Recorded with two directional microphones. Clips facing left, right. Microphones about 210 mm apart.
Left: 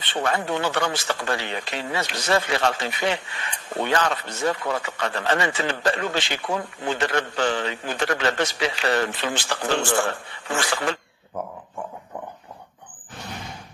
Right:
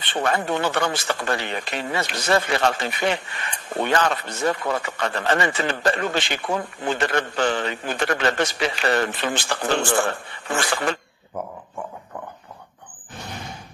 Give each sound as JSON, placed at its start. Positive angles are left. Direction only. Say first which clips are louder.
{"t": 0.0, "sound": "speech", "louder": "right 1 dB", "side_deg": -55}